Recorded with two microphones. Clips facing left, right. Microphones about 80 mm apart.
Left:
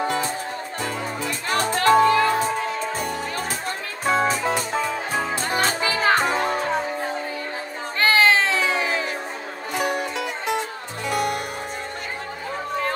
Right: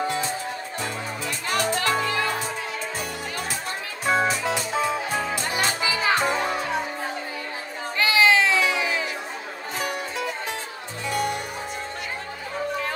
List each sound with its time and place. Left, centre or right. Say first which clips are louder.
1.2 s music: left 1 dB; left
8.0 s music: left 1 dB; left
11.1 s music: left 2 dB; left